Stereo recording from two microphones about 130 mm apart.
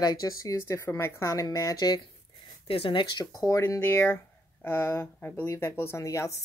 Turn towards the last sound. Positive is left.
turn(degrees=25)  # may be behind; listen again after turning